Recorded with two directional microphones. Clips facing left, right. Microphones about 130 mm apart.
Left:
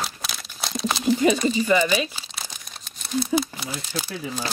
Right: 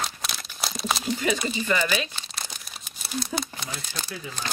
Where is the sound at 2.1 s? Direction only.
5° left (ahead or behind).